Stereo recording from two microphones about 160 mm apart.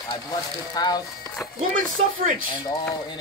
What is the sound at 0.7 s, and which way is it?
Speech, 25° left (ahead or behind).